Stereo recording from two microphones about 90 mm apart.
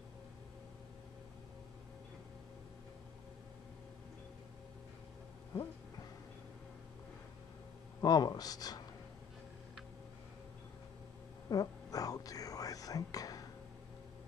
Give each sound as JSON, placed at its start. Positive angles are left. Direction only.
{"t": 8.0, "sound": "speech", "side_deg": 50}
{"t": 11.4, "sound": "whispering", "side_deg": 45}